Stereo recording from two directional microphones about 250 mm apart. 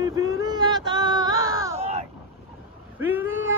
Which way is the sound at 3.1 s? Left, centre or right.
Centre.